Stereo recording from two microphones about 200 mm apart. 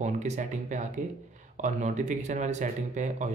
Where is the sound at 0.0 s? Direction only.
35° right (ahead or behind).